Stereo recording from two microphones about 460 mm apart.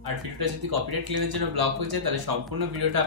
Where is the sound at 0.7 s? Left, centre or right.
Right.